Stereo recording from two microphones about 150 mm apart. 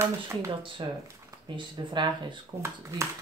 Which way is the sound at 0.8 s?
30° right (ahead or behind).